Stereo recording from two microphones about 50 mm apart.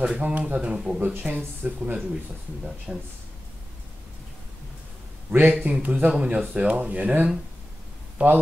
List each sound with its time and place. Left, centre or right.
0.0 s speech: right
1.2 s speech: right
2.9 s speech: centre
5.5 s speech: right